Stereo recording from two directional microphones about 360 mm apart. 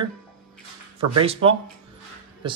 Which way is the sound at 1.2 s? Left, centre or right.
Centre.